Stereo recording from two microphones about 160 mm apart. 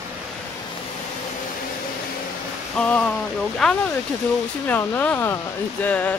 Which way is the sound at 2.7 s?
5° left (ahead or behind).